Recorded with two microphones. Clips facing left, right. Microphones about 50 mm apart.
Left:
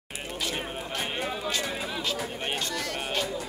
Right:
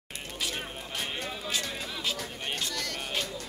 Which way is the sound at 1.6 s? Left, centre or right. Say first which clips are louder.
Left 4 dB; centre.